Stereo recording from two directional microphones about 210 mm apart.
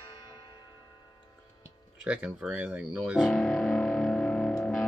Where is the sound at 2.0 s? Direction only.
5° right (ahead or behind).